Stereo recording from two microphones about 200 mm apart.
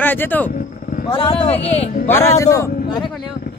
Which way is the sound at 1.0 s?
25° left (ahead or behind).